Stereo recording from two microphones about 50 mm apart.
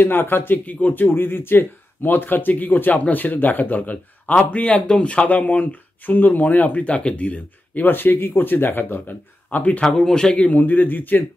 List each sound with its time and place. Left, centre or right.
0.0 s speech: left
0.7 s speech: left
9.8 s a man's voice: centre
10.5 s speech: left